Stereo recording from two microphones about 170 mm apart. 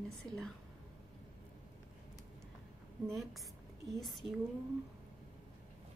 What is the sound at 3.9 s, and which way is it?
Speech, centre (ahead or behind).